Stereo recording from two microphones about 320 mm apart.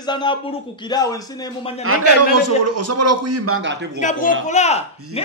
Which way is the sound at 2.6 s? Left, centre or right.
Right.